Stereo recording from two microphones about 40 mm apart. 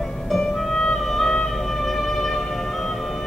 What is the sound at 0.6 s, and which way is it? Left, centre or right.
Music, centre.